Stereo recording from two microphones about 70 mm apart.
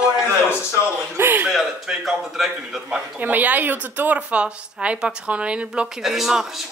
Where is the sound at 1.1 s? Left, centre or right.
Right.